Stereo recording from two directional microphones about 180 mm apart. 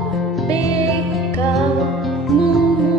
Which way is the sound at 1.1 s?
Centre (ahead or behind).